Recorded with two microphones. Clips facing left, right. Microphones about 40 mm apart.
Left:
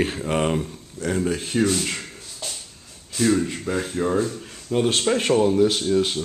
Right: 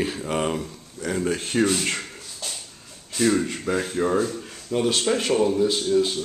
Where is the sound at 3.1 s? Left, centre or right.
Centre.